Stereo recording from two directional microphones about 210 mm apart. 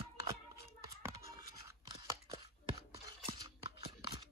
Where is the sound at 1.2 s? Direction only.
15° right (ahead or behind).